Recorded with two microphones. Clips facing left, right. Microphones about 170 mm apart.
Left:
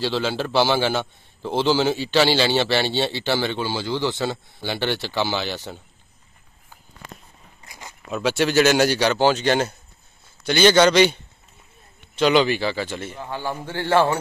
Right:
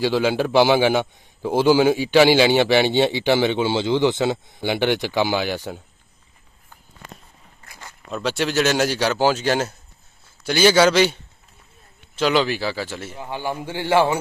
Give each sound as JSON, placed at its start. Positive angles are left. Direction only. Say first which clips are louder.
{"t": 0.0, "sound": "a man's voice", "louder": "right 4 dB", "side_deg": -10}
{"t": 7.6, "sound": "a sound", "louder": "left 1 dB", "side_deg": 15}
{"t": 8.1, "sound": "speech", "louder": "left 2 dB", "side_deg": 0}
{"t": 12.2, "sound": "a man's voice", "louder": "left 2 dB", "side_deg": 0}